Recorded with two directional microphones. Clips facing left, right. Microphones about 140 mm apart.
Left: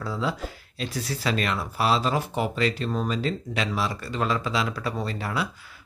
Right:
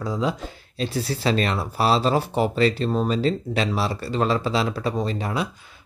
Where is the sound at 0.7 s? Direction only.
30° right (ahead or behind).